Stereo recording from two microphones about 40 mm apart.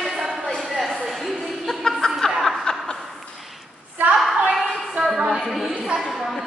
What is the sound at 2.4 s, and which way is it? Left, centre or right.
Snicker, centre.